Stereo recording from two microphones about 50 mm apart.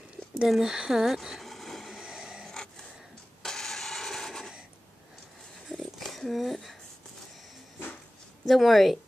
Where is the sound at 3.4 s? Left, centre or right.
Centre.